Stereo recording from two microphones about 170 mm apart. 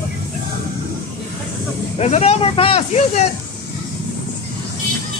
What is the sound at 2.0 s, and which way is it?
Speech, 40° left (ahead or behind).